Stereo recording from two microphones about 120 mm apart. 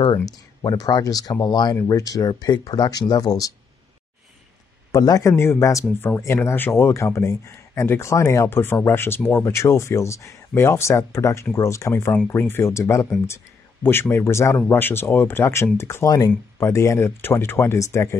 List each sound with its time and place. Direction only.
0.0 s speech: 35° left (ahead or behind)
4.9 s speech: 30° left (ahead or behind)